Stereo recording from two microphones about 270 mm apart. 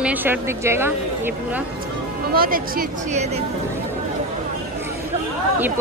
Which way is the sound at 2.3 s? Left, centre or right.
Right.